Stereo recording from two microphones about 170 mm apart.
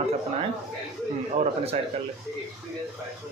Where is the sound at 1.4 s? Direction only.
35° right (ahead or behind).